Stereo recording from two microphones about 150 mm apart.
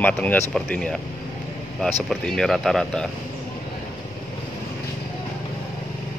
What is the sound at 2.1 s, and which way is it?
Speech, 5° left (ahead or behind).